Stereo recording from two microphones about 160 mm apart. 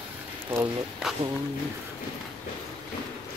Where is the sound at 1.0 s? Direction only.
5° right (ahead or behind).